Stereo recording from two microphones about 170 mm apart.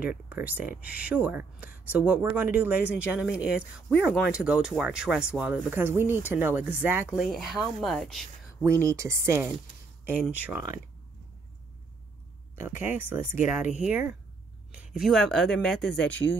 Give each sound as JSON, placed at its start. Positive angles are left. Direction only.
{"t": 0.3, "sound": "speech", "side_deg": -10}
{"t": 8.5, "sound": "speech", "side_deg": -15}
{"t": 12.5, "sound": "speech", "side_deg": -15}